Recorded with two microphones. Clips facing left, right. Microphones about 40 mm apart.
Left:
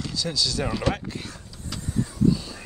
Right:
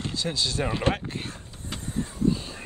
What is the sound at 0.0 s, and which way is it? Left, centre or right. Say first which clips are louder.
Vehicle: left 1 dB; right.